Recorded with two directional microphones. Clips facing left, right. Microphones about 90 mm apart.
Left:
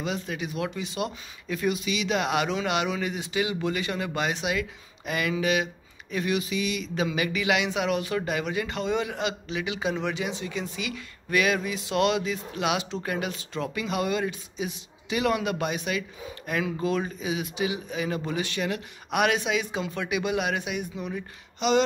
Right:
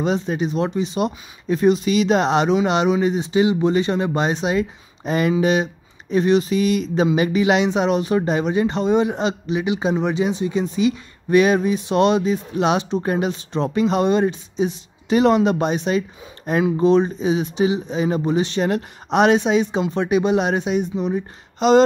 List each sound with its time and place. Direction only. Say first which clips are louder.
0.0 s speech: right 10 dB; 35° right (ahead or behind)
7.1 s speech: right 8 dB; 30° right (ahead or behind)
21.5 s speech: right 9 dB; 40° right (ahead or behind)